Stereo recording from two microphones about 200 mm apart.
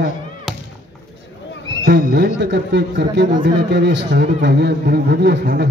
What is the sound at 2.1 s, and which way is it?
A man's voice, 55° right (ahead or behind).